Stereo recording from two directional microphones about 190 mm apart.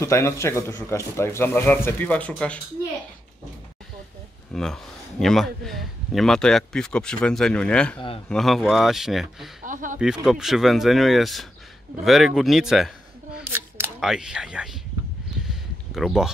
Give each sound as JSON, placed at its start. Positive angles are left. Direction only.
{"t": 0.0, "sound": "speech", "side_deg": 15}
{"t": 4.5, "sound": "speech", "side_deg": 5}
{"t": 9.7, "sound": "speech", "side_deg": -45}
{"t": 9.9, "sound": "speech", "side_deg": -5}
{"t": 13.4, "sound": "single-lens reflex camera", "side_deg": -10}
{"t": 13.9, "sound": "speech", "side_deg": 0}
{"t": 15.4, "sound": "a sound", "side_deg": 0}